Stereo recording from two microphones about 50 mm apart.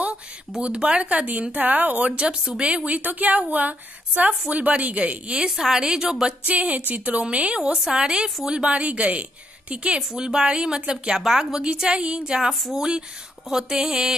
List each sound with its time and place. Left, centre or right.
0.0 s a woman's voice: right
6.4 s a woman's voice: right
9.9 s a woman's voice: centre
12.4 s speech: centre